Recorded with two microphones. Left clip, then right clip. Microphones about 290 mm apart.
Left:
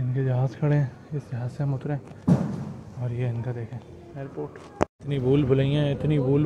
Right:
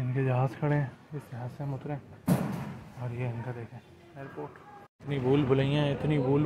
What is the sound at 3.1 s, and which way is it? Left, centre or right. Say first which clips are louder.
Speech: left 5 dB; centre.